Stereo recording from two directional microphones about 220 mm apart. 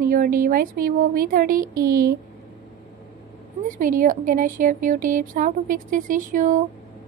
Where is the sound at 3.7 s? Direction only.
35° right (ahead or behind).